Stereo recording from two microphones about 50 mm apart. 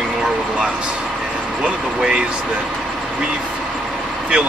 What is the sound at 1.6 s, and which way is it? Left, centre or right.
Speech, centre.